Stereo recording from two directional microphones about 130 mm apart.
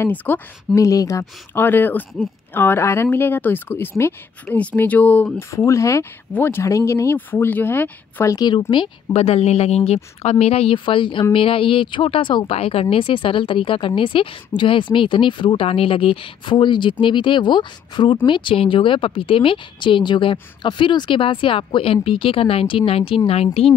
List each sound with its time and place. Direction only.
0.0 s speech: 15° left (ahead or behind)
0.7 s speech: 25° left (ahead or behind)
5.5 s speech: 25° left (ahead or behind)
8.4 s speech: 35° left (ahead or behind)